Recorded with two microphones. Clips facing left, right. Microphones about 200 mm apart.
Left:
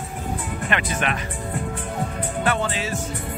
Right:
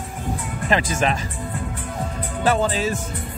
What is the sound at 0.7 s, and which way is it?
Speech, 35° right (ahead or behind).